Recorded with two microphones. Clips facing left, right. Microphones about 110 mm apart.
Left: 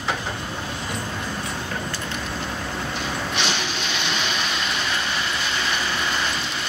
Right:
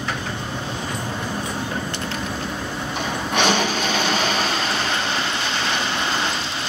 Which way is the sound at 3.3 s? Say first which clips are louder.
Right 11 dB; 50° right (ahead or behind).